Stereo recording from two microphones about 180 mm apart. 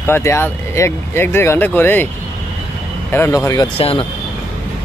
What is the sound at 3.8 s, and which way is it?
Speech, 30° left (ahead or behind).